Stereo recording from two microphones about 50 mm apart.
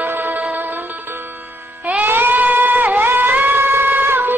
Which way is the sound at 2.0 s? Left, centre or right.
Right.